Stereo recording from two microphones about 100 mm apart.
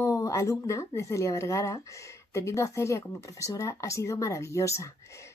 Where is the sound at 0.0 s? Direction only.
30° left (ahead or behind).